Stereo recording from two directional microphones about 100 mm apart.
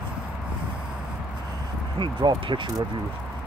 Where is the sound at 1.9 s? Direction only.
55° right (ahead or behind).